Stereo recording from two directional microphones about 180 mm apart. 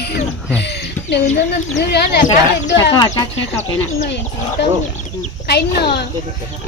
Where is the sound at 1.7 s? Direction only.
65° left (ahead or behind).